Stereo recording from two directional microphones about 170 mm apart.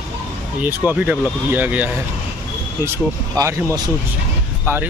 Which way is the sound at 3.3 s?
20° right (ahead or behind).